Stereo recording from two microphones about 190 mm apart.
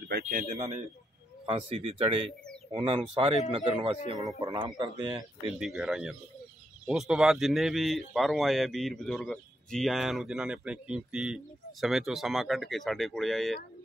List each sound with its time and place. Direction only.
0.1 s speech: 50° right (ahead or behind)
1.4 s speech: 25° right (ahead or behind)
4.1 s speech: 20° right (ahead or behind)
5.6 s speech: 5° right (ahead or behind)